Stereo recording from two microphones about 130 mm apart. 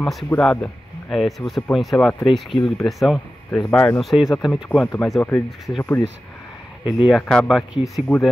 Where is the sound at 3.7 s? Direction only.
10° left (ahead or behind).